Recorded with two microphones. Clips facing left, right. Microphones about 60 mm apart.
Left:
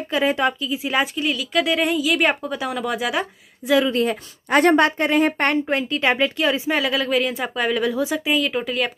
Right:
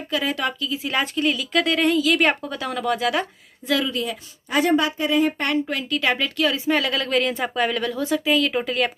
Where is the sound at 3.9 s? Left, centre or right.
Left.